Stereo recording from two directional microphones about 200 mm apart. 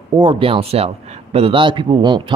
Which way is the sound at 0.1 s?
25° right (ahead or behind).